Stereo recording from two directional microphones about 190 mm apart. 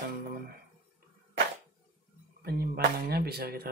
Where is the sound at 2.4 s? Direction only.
55° right (ahead or behind).